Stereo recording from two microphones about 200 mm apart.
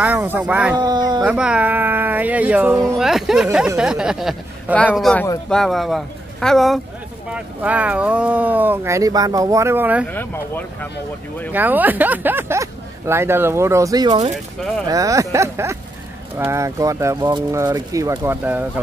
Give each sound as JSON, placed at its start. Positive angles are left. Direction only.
{"t": 0.0, "sound": "speech", "side_deg": -10}
{"t": 0.7, "sound": "speech", "side_deg": -20}
{"t": 1.2, "sound": "speech", "side_deg": -5}
{"t": 10.0, "sound": "speech", "side_deg": 10}
{"t": 11.5, "sound": "speech", "side_deg": -10}